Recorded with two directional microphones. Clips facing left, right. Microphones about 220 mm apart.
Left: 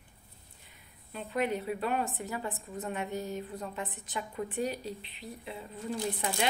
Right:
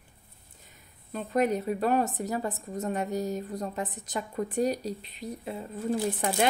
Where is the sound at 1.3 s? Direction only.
40° right (ahead or behind).